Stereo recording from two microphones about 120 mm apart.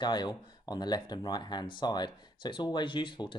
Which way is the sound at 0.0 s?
35° left (ahead or behind).